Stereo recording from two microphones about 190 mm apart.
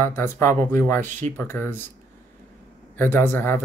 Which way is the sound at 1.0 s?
40° right (ahead or behind).